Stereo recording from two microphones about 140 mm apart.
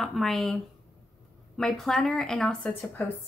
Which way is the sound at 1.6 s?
Centre (ahead or behind).